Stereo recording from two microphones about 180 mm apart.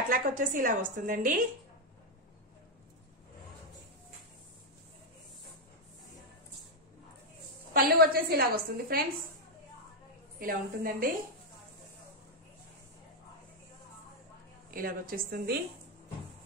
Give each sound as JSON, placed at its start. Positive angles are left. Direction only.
{"t": 0.1, "sound": "a woman's voice", "side_deg": -50}
{"t": 7.7, "sound": "a woman's voice", "side_deg": -55}
{"t": 10.4, "sound": "a woman's voice", "side_deg": -55}
{"t": 14.7, "sound": "a woman's voice", "side_deg": -50}